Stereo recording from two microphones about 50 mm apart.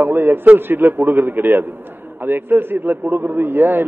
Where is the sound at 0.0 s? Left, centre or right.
Right.